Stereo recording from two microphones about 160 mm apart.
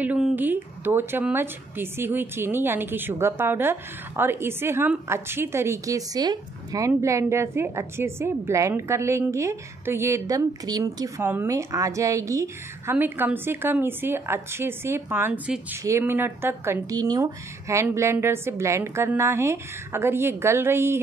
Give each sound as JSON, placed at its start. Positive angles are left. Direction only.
{"t": 0.0, "sound": "a woman's voice", "side_deg": -10}